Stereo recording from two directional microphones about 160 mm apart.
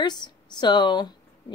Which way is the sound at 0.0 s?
25° left (ahead or behind).